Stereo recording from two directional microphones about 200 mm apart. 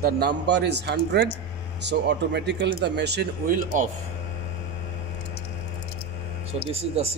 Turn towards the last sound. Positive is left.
turn(degrees=-30)  # may be behind; listen again after turning